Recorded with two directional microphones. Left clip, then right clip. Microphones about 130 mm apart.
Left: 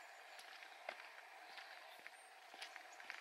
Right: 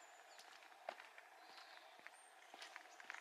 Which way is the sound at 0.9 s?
15° right (ahead or behind).